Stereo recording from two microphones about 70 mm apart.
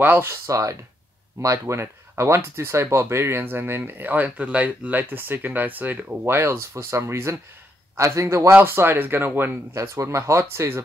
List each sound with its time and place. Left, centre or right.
0.0 s speech: right
0.3 s speech: right
8.5 s speech: right
9.8 s speech: right